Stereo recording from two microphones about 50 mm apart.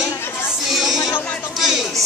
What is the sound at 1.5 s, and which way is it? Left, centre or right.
Speech, centre.